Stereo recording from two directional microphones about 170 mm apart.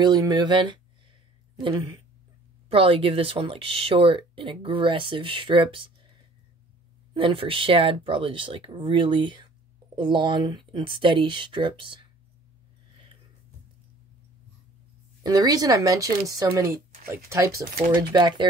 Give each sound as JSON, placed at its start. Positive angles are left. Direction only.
{"t": 0.0, "sound": "speech", "side_deg": -25}
{"t": 7.2, "sound": "speech", "side_deg": -30}
{"t": 15.2, "sound": "speech", "side_deg": -20}
{"t": 18.1, "sound": "speech", "side_deg": -30}